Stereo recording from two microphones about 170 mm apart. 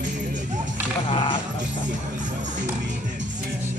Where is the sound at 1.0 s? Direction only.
30° left (ahead or behind).